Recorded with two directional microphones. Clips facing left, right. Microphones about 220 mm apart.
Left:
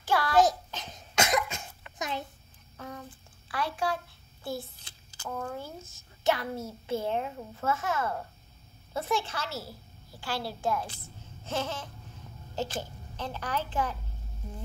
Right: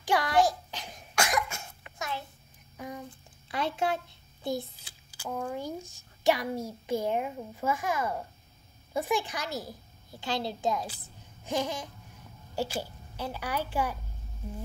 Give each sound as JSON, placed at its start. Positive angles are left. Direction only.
{"t": 0.0, "sound": "child singing", "side_deg": -15}
{"t": 0.7, "sound": "cough", "side_deg": -15}
{"t": 0.9, "sound": "cough", "side_deg": 20}
{"t": 2.8, "sound": "a sound", "side_deg": -10}
{"t": 3.4, "sound": "a child's voice", "side_deg": -25}